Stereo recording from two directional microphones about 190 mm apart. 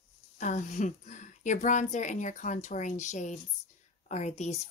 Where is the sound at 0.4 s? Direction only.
40° left (ahead or behind).